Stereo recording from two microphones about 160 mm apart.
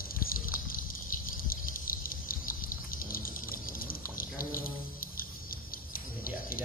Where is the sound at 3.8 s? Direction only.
65° left (ahead or behind).